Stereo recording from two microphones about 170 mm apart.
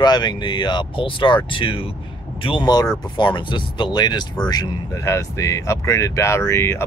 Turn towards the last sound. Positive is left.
turn(degrees=15)  # may be behind; listen again after turning